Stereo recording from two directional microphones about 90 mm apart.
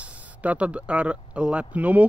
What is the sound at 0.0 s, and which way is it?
Speech, 15° right (ahead or behind).